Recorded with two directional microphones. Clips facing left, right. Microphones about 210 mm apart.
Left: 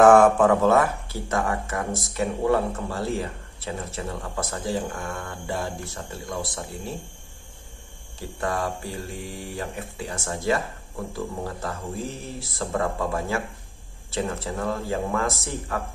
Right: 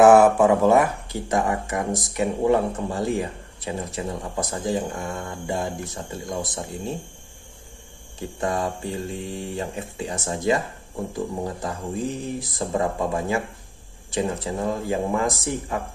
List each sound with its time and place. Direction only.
0.0 s speech: 5° right (ahead or behind)
8.2 s speech: 20° right (ahead or behind)